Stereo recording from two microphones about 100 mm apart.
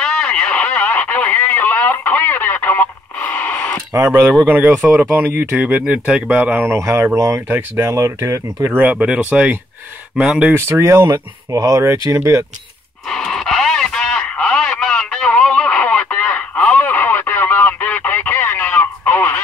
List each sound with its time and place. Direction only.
0.0 s a sound: 10° left (ahead or behind)
3.9 s speech: 25° right (ahead or behind)
6.7 s speech: 25° right (ahead or behind)
8.6 s speech: 15° right (ahead or behind)
10.5 s speech: 30° right (ahead or behind)
13.1 s radio: 5° left (ahead or behind)